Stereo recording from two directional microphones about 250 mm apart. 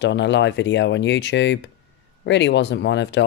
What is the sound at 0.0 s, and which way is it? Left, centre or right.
Speech, left.